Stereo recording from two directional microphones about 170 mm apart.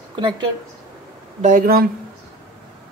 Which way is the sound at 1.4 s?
50° right (ahead or behind).